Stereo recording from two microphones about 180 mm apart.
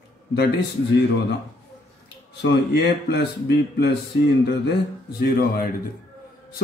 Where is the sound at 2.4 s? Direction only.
70° left (ahead or behind).